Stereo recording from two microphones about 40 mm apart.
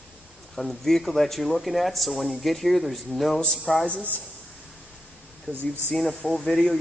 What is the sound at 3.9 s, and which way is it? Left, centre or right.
Speech, left.